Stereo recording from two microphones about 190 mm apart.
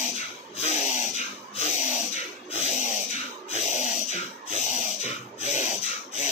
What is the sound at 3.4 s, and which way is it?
Snort, 35° left (ahead or behind).